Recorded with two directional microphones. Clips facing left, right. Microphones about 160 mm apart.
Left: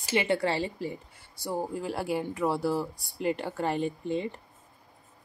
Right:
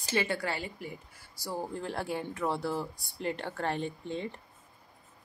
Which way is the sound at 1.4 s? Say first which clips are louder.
Left 4 dB; 15° left (ahead or behind).